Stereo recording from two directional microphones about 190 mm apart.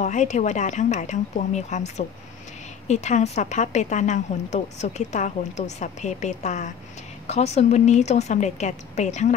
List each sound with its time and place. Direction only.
0.0 s a woman's voice: 40° left (ahead or behind)